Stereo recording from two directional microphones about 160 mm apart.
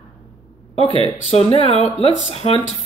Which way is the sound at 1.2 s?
40° left (ahead or behind).